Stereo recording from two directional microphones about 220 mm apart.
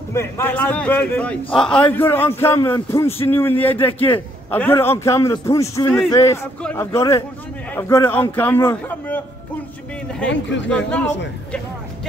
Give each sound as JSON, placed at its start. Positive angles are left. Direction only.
{"t": 0.1, "sound": "a man's voice", "side_deg": 10}
{"t": 10.3, "sound": "speech", "side_deg": 55}
{"t": 10.9, "sound": "speech", "side_deg": 5}